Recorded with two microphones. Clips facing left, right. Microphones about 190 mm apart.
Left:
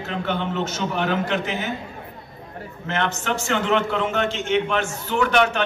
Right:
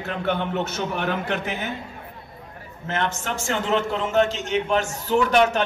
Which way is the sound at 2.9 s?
45° right (ahead or behind).